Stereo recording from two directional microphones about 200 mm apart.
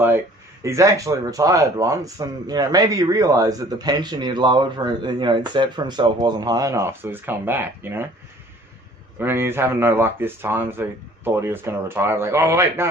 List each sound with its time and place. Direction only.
0.7 s speech: 15° right (ahead or behind)
9.2 s speech: 10° right (ahead or behind)